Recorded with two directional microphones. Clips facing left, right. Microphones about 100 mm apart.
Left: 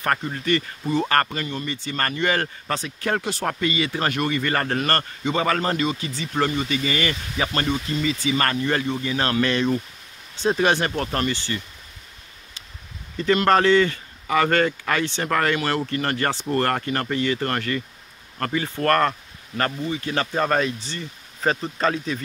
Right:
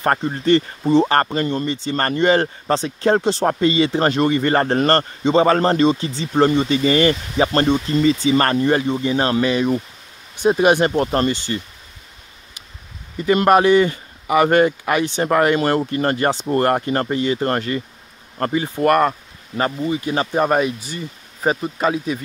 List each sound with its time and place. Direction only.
0.0 s speech: 30° right (ahead or behind)
8.6 s speech: 20° right (ahead or behind)
9.5 s speech: 15° right (ahead or behind)
13.2 s speech: 15° right (ahead or behind)